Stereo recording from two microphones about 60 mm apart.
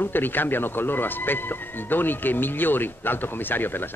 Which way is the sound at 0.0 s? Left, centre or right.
Left.